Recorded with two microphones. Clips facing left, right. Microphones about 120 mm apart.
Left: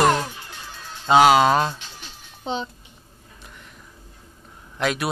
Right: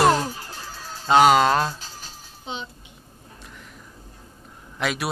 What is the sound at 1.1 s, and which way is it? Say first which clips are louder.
Music: left 1 dB; 5° left (ahead or behind).